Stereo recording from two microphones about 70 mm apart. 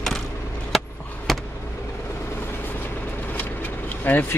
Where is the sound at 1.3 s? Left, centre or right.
Centre.